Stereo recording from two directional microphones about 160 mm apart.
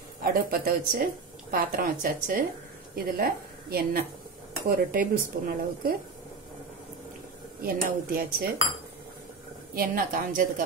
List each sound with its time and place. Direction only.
0.2 s a woman's voice: 65° right (ahead or behind)
7.6 s speech: 65° right (ahead or behind)
9.8 s a woman's voice: 60° right (ahead or behind)